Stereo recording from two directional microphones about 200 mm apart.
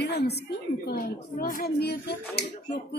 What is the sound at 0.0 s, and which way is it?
A woman's voice, 55° left (ahead or behind).